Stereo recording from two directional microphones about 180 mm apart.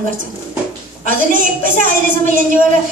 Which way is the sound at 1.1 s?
45° right (ahead or behind).